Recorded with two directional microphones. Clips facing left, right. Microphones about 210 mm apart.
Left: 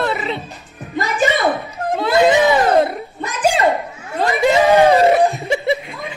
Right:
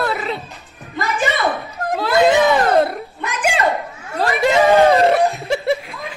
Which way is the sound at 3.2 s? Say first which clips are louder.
Left 3 dB; 35° left (ahead or behind).